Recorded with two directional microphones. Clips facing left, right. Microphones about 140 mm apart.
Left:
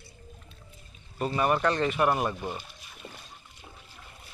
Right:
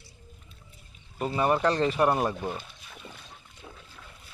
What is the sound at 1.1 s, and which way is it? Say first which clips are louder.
Speech: right 1 dB; 20° right (ahead or behind).